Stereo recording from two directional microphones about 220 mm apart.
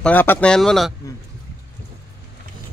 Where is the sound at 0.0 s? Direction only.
10° left (ahead or behind).